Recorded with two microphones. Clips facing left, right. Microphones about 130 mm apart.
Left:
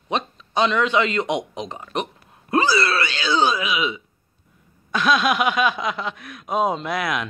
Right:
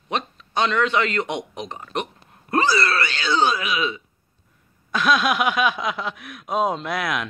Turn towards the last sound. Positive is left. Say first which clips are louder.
# left 1 dB
turn(degrees=0)  # may be behind; listen again after turning